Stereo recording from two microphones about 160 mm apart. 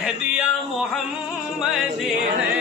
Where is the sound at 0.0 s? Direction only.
5° right (ahead or behind).